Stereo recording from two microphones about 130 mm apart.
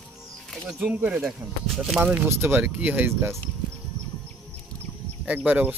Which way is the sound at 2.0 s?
15° right (ahead or behind).